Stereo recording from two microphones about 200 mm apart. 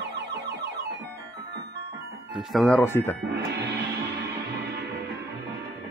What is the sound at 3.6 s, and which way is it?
Music, 60° right (ahead or behind).